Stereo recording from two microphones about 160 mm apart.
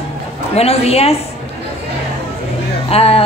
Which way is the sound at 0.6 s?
40° left (ahead or behind).